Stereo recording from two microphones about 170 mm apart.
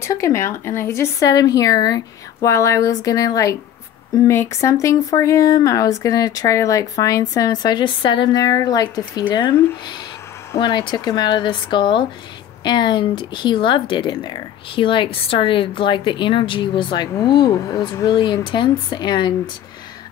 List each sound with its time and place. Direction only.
0.0 s speech: 20° left (ahead or behind)